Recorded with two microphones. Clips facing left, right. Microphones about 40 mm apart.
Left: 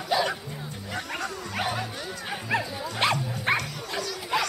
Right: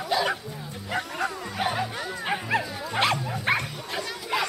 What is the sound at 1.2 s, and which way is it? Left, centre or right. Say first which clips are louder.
Music: right 2 dB; centre.